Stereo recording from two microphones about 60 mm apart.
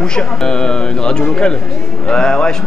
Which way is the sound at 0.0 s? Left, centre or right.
Centre.